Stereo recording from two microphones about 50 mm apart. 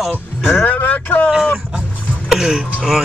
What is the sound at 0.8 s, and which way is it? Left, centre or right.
Speech, left.